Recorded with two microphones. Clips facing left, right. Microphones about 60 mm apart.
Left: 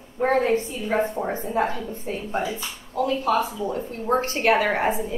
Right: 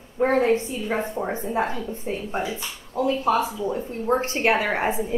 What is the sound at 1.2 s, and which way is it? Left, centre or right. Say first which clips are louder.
A woman's voice: left 1 dB; centre.